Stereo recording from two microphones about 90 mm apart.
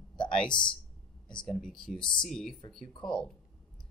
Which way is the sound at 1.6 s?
5° left (ahead or behind).